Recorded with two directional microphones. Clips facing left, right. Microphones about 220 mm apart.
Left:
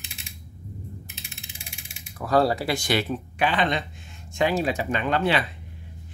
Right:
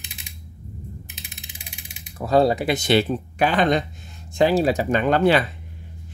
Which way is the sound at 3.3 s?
45° right (ahead or behind).